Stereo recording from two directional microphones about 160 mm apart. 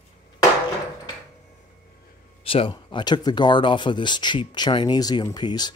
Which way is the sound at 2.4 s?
35° left (ahead or behind).